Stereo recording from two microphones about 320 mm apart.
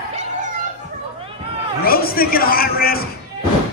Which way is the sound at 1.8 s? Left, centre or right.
Left.